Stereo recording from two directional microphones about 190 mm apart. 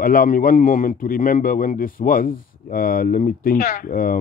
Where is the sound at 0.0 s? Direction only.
50° left (ahead or behind).